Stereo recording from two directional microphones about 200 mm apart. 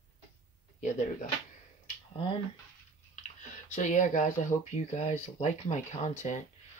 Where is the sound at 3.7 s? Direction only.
35° left (ahead or behind).